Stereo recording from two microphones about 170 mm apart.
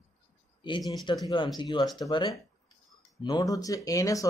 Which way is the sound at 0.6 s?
30° left (ahead or behind).